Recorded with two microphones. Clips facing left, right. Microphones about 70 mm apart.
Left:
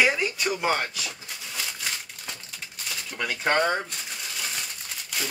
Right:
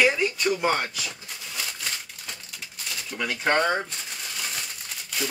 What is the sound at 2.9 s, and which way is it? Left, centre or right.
Speech, centre.